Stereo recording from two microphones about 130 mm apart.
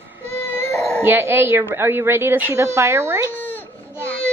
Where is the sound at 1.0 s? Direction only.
15° right (ahead or behind).